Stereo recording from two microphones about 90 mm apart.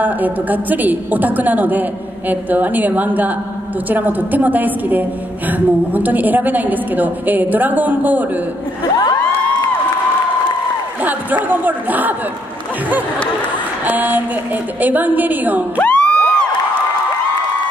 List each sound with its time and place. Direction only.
0.0 s a woman's voice: 20° right (ahead or behind)
11.1 s a woman's voice: 20° right (ahead or behind)
13.8 s a woman's voice: 20° right (ahead or behind)
15.8 s music: 15° left (ahead or behind)